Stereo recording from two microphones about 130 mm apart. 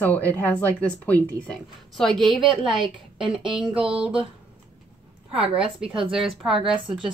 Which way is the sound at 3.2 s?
40° right (ahead or behind).